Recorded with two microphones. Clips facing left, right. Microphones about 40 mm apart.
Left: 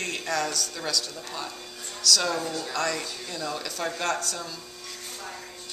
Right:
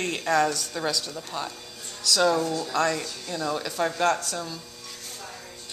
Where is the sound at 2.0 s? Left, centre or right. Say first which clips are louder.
Right 3 dB; right.